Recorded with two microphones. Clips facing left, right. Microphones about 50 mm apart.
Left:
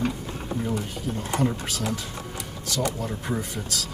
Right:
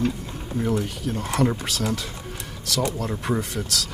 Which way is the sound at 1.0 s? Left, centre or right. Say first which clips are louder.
Right 2 dB; right.